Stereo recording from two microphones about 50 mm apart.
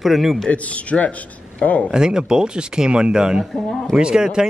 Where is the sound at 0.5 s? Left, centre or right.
Left.